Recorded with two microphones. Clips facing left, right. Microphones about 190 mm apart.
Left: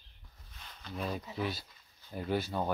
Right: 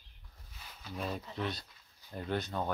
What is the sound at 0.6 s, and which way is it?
Speech, 5° right (ahead or behind).